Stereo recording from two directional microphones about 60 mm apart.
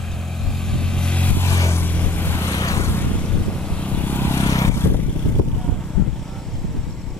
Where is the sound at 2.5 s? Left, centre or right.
Left.